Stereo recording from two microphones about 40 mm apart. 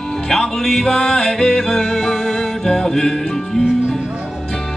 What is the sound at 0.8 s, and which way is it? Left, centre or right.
Music, centre.